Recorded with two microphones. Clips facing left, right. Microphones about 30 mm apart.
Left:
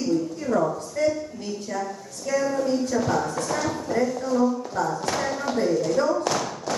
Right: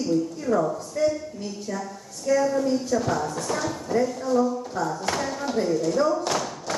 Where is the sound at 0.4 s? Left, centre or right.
Centre.